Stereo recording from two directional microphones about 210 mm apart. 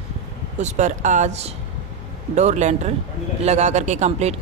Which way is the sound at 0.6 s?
35° right (ahead or behind).